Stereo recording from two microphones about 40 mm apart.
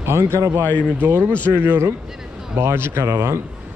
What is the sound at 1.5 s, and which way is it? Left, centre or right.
Speech, right.